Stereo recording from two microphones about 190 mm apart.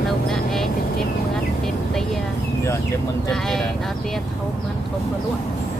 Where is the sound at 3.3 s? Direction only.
Centre (ahead or behind).